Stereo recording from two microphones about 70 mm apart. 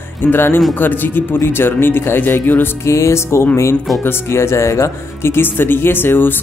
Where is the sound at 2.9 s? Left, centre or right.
Left.